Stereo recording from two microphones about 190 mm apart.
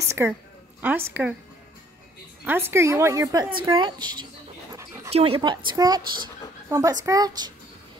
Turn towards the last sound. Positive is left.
turn(degrees=-20)  # may be behind; listen again after turning